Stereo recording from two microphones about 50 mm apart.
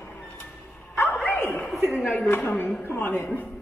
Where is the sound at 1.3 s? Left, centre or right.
Left.